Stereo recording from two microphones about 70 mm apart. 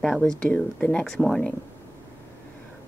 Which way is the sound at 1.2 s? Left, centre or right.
Centre.